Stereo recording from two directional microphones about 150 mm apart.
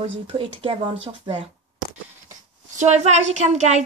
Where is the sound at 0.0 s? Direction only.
40° right (ahead or behind).